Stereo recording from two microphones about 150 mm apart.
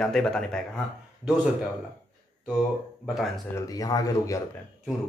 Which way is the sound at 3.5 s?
25° left (ahead or behind).